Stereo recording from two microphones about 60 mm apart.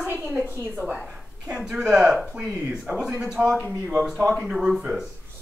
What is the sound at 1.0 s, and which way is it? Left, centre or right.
Speech, centre.